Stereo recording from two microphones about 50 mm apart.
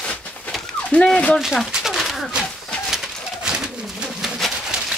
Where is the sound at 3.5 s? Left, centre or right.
Centre.